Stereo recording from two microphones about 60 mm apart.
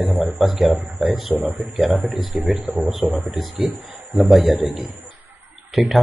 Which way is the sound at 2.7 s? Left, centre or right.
Right.